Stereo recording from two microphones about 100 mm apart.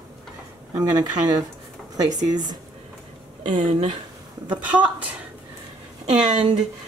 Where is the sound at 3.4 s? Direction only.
55° right (ahead or behind).